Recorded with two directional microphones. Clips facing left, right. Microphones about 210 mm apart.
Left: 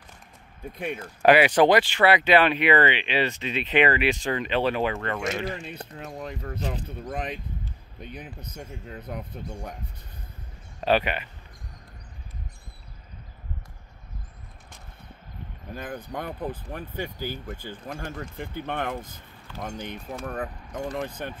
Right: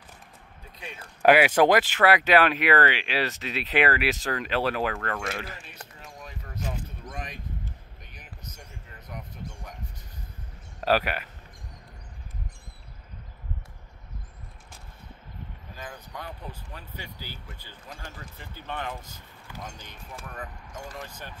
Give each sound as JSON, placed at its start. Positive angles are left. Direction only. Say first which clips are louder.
{"t": 1.2, "sound": "speech", "louder": "left 1 dB", "side_deg": -10}
{"t": 6.2, "sound": "speech", "louder": "left 6 dB", "side_deg": 55}
{"t": 8.0, "sound": "speech", "louder": "left 12 dB", "side_deg": 60}
{"t": 10.8, "sound": "speech", "louder": "left 2 dB", "side_deg": -5}
{"t": 15.7, "sound": "speech", "louder": "left 8 dB", "side_deg": 55}